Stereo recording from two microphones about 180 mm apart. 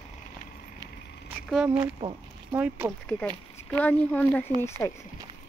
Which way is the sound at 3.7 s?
10° left (ahead or behind).